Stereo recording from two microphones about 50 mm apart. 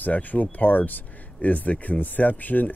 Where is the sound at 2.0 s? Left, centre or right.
Left.